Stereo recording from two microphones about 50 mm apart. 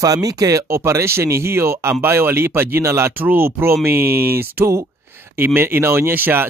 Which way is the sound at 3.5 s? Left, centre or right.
Right.